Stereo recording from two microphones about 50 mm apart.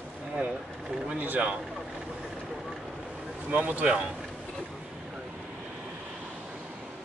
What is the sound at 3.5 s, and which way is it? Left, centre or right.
Speech, right.